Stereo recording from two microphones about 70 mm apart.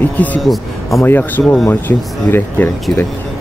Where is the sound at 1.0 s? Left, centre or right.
Left.